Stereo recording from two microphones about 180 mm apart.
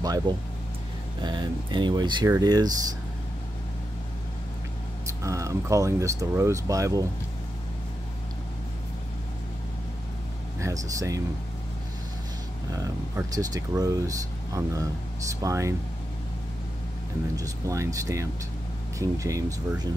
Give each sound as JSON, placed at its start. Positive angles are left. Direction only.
{"t": 1.2, "sound": "speech", "side_deg": -25}
{"t": 5.0, "sound": "speech", "side_deg": -15}
{"t": 10.6, "sound": "speech", "side_deg": -20}
{"t": 12.7, "sound": "speech", "side_deg": -20}
{"t": 17.4, "sound": "speech", "side_deg": -15}